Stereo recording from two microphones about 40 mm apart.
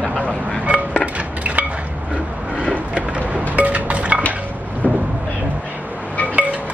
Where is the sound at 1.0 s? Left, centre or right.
Right.